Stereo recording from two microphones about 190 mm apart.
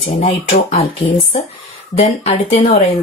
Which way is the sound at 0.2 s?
30° left (ahead or behind).